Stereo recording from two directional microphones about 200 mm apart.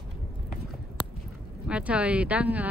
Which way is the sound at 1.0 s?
25° left (ahead or behind).